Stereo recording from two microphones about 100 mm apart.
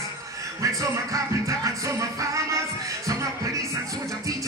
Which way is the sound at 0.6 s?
35° right (ahead or behind).